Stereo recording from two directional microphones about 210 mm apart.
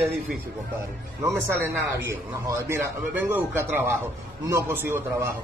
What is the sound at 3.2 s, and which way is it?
A man's voice, 10° right (ahead or behind).